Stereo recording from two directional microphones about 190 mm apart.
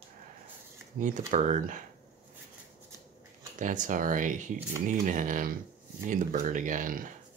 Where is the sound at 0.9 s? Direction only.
45° right (ahead or behind).